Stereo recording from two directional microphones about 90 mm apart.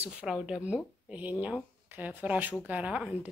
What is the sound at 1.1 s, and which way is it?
Speech, 15° right (ahead or behind).